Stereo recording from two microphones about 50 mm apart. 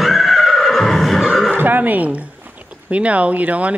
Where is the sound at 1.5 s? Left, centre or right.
Right.